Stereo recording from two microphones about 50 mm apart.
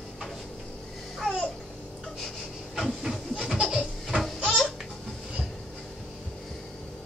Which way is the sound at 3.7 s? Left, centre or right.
Centre.